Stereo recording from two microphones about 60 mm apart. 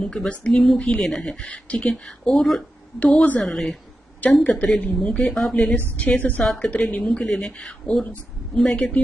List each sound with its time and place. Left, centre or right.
0.0 s speech: centre
2.0 s speech: centre
3.0 s speech: left
3.4 s speech: centre
4.4 s speech: left
5.2 s speech: centre
5.9 s speech: left
7.2 s speech: centre